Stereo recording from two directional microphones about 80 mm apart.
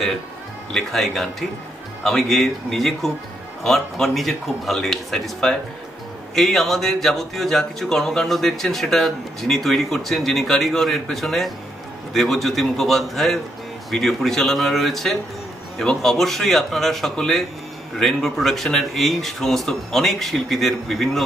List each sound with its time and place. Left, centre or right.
0.7 s a man's voice: centre